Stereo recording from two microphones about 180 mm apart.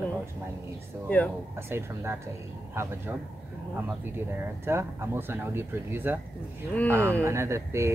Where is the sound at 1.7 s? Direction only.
15° right (ahead or behind).